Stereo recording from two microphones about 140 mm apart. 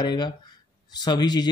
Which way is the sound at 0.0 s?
30° left (ahead or behind).